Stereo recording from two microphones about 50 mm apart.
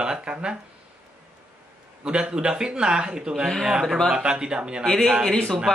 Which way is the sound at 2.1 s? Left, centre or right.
Centre.